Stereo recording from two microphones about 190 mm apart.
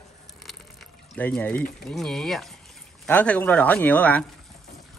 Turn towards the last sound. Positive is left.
turn(degrees=10)  # may be behind; listen again after turning